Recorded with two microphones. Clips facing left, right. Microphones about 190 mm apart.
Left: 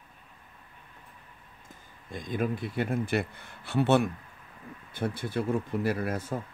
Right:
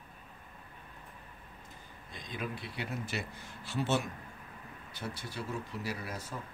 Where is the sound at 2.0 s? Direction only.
50° left (ahead or behind).